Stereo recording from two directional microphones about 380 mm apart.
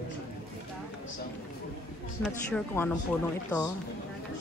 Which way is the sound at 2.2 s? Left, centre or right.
Centre.